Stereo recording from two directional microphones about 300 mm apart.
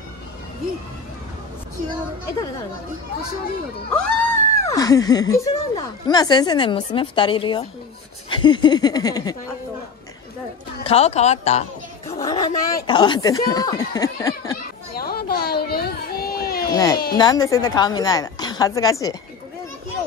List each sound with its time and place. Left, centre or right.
3.9 s speech: centre
10.8 s speech: centre
15.0 s children playing: left
16.7 s a child's voice: centre